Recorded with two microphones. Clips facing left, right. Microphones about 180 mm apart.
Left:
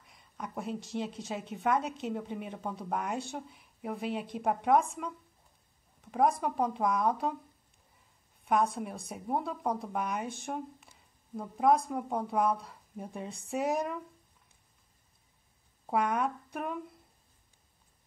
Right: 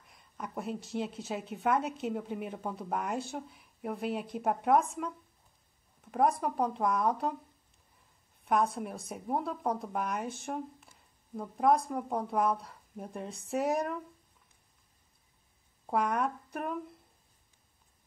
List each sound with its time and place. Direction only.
0.0 s a woman's voice: centre (ahead or behind)
8.5 s a woman's voice: centre (ahead or behind)
15.9 s a woman's voice: centre (ahead or behind)